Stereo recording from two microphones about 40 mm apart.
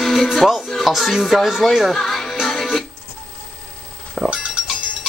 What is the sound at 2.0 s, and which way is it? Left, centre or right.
Music, centre.